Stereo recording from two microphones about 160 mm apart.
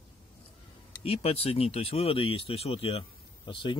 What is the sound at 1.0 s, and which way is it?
Speech, 35° left (ahead or behind).